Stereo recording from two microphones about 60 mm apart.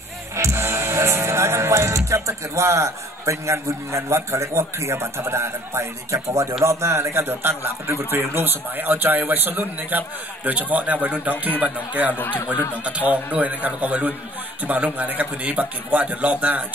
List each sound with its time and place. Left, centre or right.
0.4 s music: right
6.6 s a man's voice: right
12.2 s speech: left
13.1 s speech: right